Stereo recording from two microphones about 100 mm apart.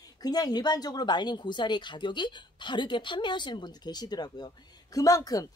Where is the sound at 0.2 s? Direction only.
40° left (ahead or behind).